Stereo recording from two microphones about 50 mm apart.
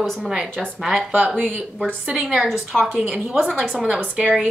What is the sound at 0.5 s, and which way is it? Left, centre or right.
Speech, centre.